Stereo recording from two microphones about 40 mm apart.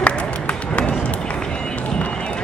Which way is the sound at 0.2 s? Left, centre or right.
Left.